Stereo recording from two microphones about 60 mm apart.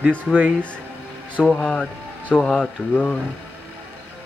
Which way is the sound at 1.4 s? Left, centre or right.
Centre.